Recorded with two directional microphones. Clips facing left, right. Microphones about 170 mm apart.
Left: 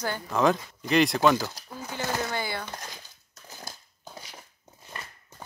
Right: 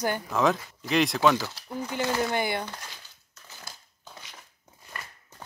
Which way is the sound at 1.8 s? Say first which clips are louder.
Right 3 dB; 15° right (ahead or behind).